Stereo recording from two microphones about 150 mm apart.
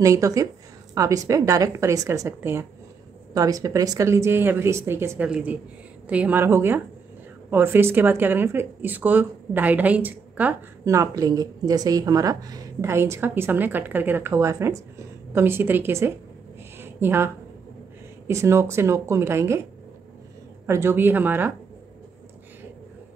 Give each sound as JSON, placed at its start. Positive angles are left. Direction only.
{"t": 0.0, "sound": "speech", "side_deg": -20}
{"t": 16.7, "sound": "a sound", "side_deg": -15}
{"t": 18.2, "sound": "speech", "side_deg": -15}
{"t": 20.6, "sound": "speech", "side_deg": -15}